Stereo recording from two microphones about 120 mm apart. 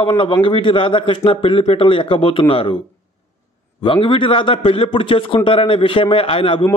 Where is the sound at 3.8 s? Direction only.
45° left (ahead or behind).